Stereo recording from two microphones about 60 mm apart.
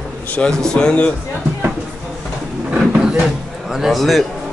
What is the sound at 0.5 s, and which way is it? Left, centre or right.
Speech, centre.